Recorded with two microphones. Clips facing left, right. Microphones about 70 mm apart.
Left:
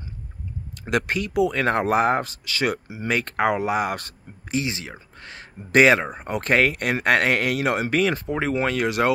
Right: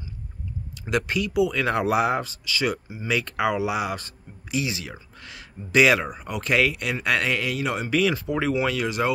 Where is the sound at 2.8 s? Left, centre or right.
Left.